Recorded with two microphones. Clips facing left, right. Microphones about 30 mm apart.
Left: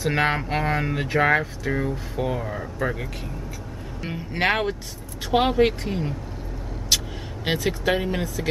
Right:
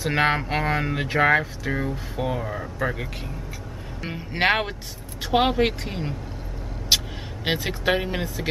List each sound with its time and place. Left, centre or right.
0.0 s speech: centre
6.9 s vehicle: right
7.4 s speech: centre